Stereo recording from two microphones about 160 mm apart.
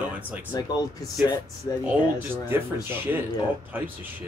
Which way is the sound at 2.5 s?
15° right (ahead or behind).